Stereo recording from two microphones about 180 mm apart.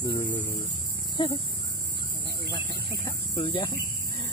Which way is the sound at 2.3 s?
25° left (ahead or behind).